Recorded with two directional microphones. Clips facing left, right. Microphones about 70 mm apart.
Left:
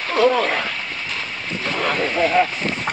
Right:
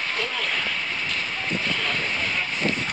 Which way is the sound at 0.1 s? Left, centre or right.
Left.